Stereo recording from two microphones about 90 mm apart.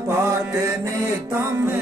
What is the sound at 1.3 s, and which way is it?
Music, 25° right (ahead or behind).